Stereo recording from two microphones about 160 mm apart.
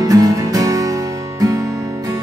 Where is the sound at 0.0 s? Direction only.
20° right (ahead or behind).